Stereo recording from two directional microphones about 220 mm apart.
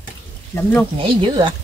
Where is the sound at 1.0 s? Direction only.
20° right (ahead or behind).